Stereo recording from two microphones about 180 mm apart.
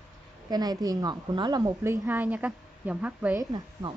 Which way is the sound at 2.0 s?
10° right (ahead or behind).